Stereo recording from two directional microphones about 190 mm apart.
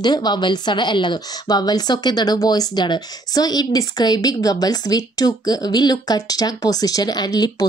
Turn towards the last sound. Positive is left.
turn(degrees=20)  # may be behind; listen again after turning